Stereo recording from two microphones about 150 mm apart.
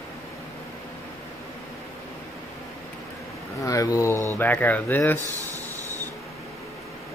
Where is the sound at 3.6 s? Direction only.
20° left (ahead or behind).